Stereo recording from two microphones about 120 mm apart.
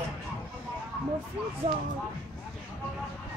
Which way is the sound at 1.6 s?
50° right (ahead or behind).